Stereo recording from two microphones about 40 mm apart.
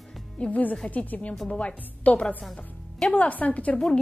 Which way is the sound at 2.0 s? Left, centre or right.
Left.